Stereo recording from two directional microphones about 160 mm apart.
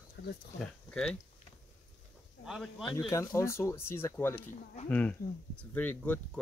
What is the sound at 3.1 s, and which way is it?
Speech, 20° left (ahead or behind).